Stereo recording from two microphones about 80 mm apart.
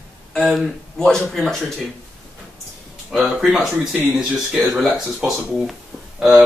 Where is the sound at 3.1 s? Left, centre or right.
Centre.